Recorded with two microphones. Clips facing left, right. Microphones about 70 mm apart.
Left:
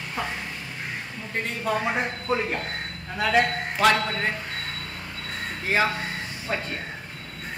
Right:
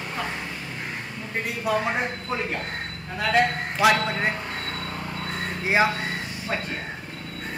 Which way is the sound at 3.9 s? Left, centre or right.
Centre.